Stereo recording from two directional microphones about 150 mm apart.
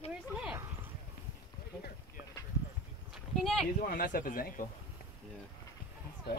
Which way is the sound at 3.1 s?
5° left (ahead or behind).